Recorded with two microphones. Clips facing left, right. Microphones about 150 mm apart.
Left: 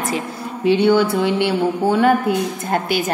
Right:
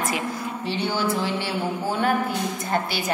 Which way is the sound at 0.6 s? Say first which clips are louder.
Left 12 dB; 60° left (ahead or behind).